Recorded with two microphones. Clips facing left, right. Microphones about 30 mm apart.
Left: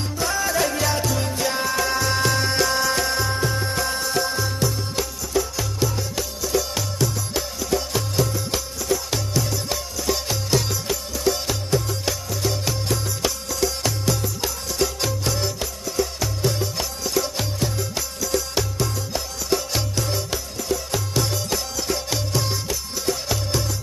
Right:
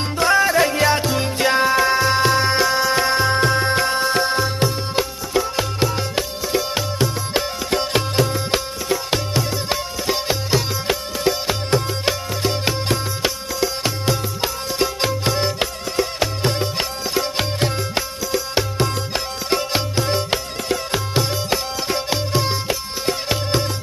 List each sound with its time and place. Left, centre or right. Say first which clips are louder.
0.2 s music: right 7 dB; right
3.3 s music: right 7 dB; right
7.7 s music: right 4 dB; right
18.3 s music: right 3 dB; right